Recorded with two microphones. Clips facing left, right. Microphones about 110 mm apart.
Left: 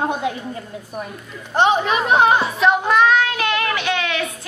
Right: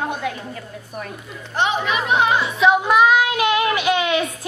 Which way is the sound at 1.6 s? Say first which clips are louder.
Left 4 dB; 40° left (ahead or behind).